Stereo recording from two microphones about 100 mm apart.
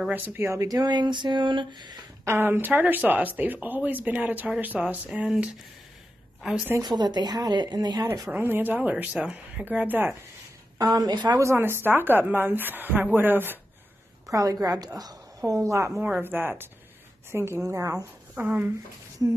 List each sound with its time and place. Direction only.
0.1 s speech: 25° right (ahead or behind); by 2.0 s 50° right (ahead or behind)
2.2 s speech: 25° right (ahead or behind); by 6.6 s 5° right (ahead or behind)
6.8 s speech: 45° right (ahead or behind)
8.3 s speech: 20° right (ahead or behind)
10.8 s speech: 40° right (ahead or behind)
11.3 s speech: 25° right (ahead or behind)
14.2 s a woman's voice: 35° right (ahead or behind)
16.0 s a woman's voice: 20° right (ahead or behind)
18.3 s speech: 20° right (ahead or behind)